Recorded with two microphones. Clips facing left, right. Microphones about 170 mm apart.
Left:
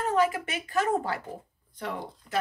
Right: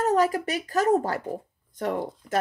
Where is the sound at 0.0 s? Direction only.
40° right (ahead or behind).